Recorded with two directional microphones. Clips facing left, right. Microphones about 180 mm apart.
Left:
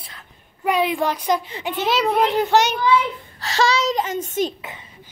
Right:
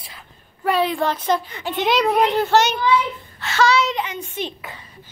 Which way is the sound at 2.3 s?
15° left (ahead or behind).